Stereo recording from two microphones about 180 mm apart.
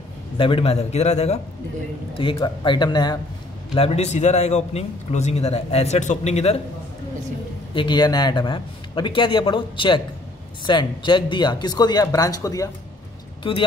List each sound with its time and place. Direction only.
0.4 s a man's voice: 30° left (ahead or behind)
3.7 s a man's voice: 35° left (ahead or behind)
7.7 s a man's voice: 25° left (ahead or behind)